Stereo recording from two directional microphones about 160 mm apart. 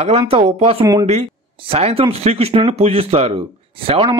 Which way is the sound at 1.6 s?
40° right (ahead or behind).